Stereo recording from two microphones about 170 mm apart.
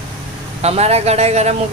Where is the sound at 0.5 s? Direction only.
40° right (ahead or behind).